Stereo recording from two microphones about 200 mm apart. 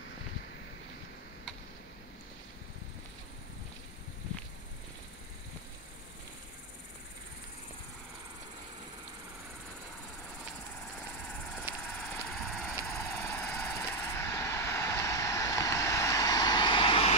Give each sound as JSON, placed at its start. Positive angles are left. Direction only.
{"t": 11.7, "sound": "vehicle", "side_deg": -10}
{"t": 12.1, "sound": "vehicle", "side_deg": 0}
{"t": 12.9, "sound": "vehicle", "side_deg": 15}